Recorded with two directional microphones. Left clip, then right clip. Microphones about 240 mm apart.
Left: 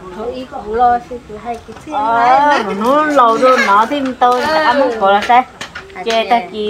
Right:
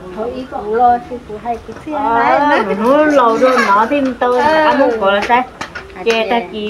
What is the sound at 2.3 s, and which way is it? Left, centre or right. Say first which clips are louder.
Speech: left 1 dB; left.